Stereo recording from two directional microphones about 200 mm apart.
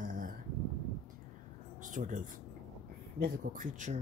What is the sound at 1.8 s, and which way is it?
Speech, 40° right (ahead or behind).